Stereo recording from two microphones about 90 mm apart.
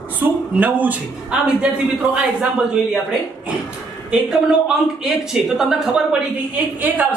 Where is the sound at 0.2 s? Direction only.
20° right (ahead or behind).